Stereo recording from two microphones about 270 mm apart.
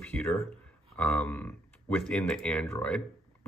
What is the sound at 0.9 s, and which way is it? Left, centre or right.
Speech, centre.